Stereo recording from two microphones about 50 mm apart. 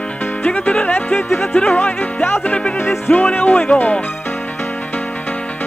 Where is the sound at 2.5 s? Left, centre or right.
Left.